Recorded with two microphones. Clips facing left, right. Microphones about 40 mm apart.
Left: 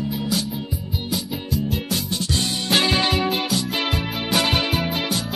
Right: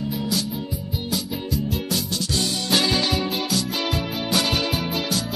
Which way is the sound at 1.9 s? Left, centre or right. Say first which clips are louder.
Left 1 dB; left.